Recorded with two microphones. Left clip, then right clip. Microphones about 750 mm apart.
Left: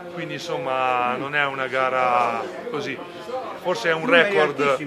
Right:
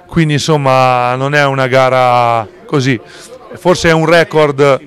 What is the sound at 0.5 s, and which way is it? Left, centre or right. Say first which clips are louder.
Speech: right 13 dB; right.